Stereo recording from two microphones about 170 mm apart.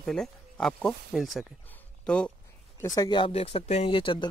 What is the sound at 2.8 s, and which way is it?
Speech, 20° left (ahead or behind).